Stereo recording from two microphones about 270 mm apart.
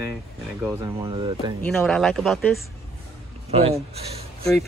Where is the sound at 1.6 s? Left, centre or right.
Centre.